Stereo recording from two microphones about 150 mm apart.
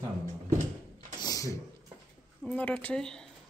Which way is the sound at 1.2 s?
25° left (ahead or behind).